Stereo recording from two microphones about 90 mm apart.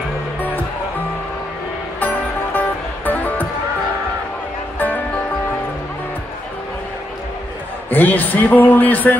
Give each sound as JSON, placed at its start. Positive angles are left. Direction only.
{"t": 2.0, "sound": "music", "side_deg": 20}
{"t": 4.7, "sound": "music", "side_deg": 20}
{"t": 7.9, "sound": "speech", "side_deg": 20}